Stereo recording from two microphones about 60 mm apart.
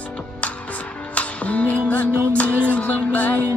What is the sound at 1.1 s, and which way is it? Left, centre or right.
Music, left.